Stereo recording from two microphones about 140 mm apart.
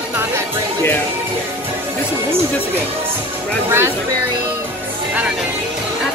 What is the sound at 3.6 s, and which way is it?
Speech, 20° right (ahead or behind).